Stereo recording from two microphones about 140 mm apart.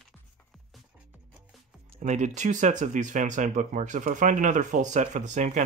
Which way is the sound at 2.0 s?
60° right (ahead or behind).